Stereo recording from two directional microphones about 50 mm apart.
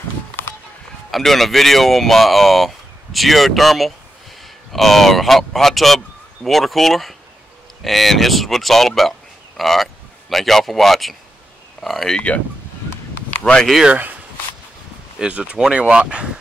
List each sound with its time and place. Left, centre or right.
1.1 s speech: centre
13.4 s speech: centre
15.1 s speech: right